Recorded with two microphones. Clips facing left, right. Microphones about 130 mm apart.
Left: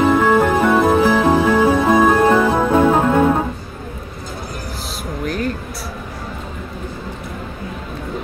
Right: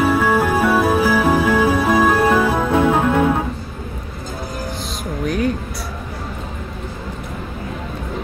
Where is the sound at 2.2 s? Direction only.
10° right (ahead or behind).